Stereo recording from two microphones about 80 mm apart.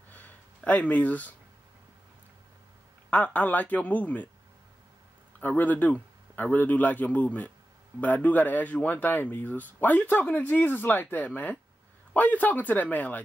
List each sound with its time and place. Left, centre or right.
0.1 s a sound: centre
3.1 s speech: centre
5.4 s speech: left